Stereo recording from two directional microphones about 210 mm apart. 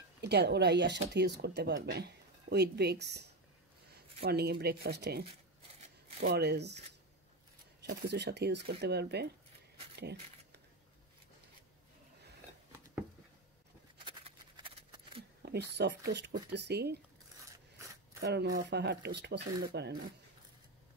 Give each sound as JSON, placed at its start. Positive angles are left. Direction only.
{"t": 0.2, "sound": "speech", "side_deg": -50}
{"t": 6.2, "sound": "speech", "side_deg": -50}
{"t": 7.8, "sound": "speech", "side_deg": -55}
{"t": 14.0, "sound": "a sound", "side_deg": -25}
{"t": 15.4, "sound": "speech", "side_deg": -50}
{"t": 17.5, "sound": "scissors", "side_deg": -15}
{"t": 18.2, "sound": "speech", "side_deg": -55}